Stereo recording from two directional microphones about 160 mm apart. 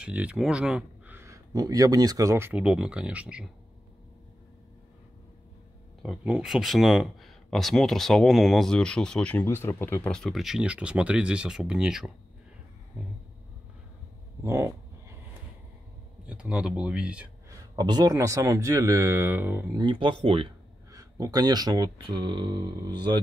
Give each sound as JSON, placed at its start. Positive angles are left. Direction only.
{"t": 0.0, "sound": "speech", "side_deg": -10}
{"t": 6.0, "sound": "speech", "side_deg": 0}
{"t": 14.4, "sound": "a sound", "side_deg": -20}
{"t": 16.3, "sound": "speech", "side_deg": -5}
{"t": 17.7, "sound": "speech", "side_deg": -25}
{"t": 19.8, "sound": "speech", "side_deg": -30}
{"t": 20.9, "sound": "speech", "side_deg": -20}